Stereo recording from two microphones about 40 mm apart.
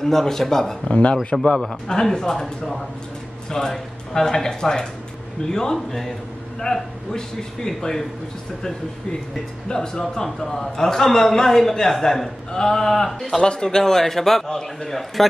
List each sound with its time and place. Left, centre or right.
0.0 s a man's voice: centre
0.8 s a man's voice: left
9.7 s a man's voice: centre
13.4 s a man's voice: centre